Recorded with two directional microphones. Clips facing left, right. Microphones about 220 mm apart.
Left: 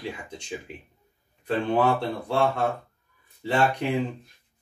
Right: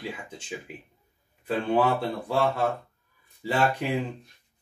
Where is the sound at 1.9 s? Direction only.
5° right (ahead or behind).